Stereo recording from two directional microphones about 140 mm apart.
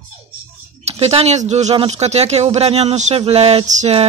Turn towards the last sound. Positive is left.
turn(degrees=-50)  # may be behind; listen again after turning